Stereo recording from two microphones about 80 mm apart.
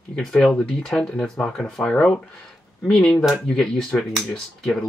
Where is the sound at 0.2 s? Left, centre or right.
Centre.